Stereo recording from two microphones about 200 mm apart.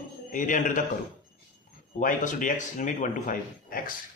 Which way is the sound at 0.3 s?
40° left (ahead or behind).